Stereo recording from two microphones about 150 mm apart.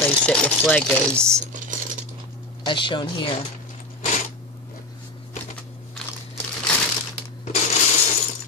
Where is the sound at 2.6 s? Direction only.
35° left (ahead or behind).